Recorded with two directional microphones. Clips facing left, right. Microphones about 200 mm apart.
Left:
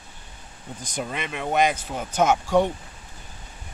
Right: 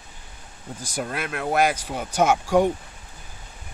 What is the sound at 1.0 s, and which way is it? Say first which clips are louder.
Speech: right 2 dB; 5° right (ahead or behind).